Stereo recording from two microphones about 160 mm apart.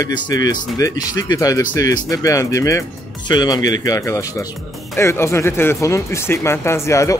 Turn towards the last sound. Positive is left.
turn(degrees=20)  # may be behind; listen again after turning